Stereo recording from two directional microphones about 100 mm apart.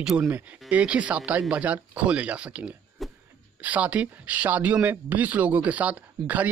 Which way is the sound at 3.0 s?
Centre (ahead or behind).